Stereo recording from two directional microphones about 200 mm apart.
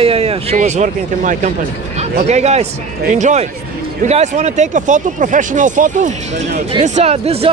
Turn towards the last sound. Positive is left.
turn(degrees=-30)  # may be behind; listen again after turning